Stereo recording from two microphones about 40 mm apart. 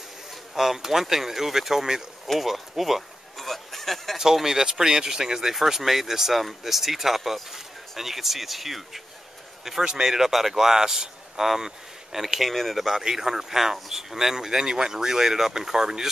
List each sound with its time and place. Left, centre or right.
0.6 s speech: centre
2.2 s a sound: centre
4.2 s speech: centre
9.7 s speech: centre
13.0 s speech: centre